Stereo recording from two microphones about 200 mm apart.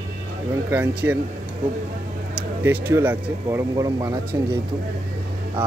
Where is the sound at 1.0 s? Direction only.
10° right (ahead or behind).